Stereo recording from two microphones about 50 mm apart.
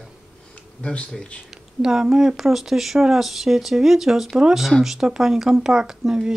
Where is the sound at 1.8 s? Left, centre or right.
Centre.